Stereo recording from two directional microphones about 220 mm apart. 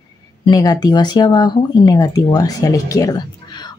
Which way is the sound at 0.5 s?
15° left (ahead or behind).